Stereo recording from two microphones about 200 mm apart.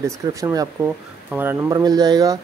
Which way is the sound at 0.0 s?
15° right (ahead or behind).